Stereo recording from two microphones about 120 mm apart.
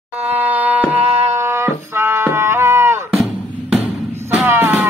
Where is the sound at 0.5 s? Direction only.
15° right (ahead or behind).